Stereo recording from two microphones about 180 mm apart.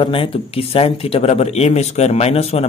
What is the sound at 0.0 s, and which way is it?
Speech, 30° left (ahead or behind).